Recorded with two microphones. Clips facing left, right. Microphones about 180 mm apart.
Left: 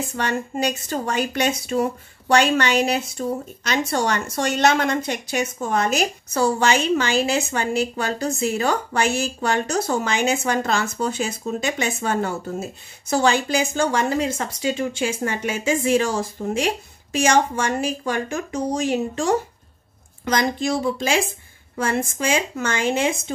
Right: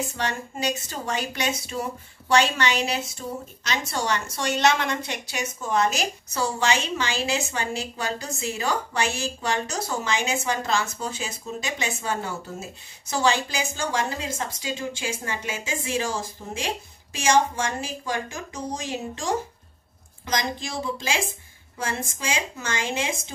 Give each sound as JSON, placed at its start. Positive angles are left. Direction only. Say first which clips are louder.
{"t": 0.1, "sound": "speech", "louder": "left 5 dB", "side_deg": 55}
{"t": 20.3, "sound": "speech", "louder": "left 7 dB", "side_deg": 60}